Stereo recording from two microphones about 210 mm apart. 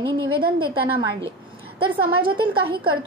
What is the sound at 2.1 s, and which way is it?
Speech, 25° right (ahead or behind).